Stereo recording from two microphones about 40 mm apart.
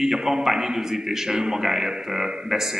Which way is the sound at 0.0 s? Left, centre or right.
Centre.